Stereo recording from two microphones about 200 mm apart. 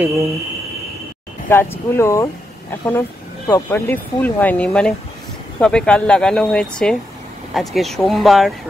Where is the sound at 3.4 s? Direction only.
10° left (ahead or behind).